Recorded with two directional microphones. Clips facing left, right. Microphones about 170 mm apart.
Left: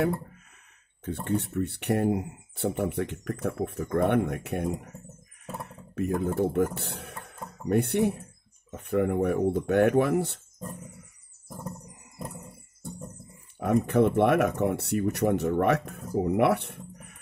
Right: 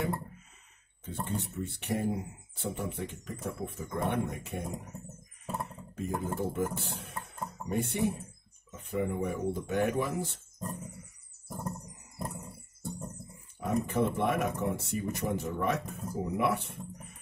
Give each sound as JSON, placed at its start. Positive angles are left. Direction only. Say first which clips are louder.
{"t": 1.0, "sound": "speech", "louder": "left 7 dB", "side_deg": 70}
{"t": 5.9, "sound": "speech", "louder": "left 7 dB", "side_deg": 70}
{"t": 13.6, "sound": "speech", "louder": "left 7 dB", "side_deg": 65}